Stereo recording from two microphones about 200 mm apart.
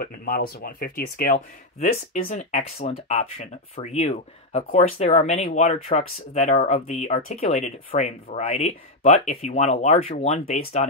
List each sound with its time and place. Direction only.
0.0 s speech: 45° left (ahead or behind)
2.8 s speech: 30° left (ahead or behind)